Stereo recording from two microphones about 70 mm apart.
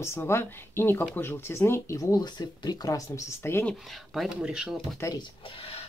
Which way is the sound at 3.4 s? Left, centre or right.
Left.